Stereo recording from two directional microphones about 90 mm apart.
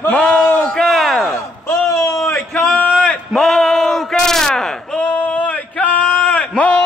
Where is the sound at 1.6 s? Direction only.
35° left (ahead or behind).